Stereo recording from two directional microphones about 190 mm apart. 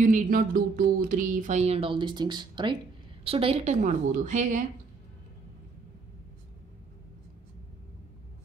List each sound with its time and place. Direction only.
0.0 s speech: 45° right (ahead or behind)